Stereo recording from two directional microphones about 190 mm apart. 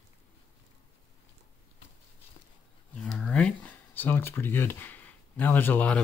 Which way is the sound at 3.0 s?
5° left (ahead or behind).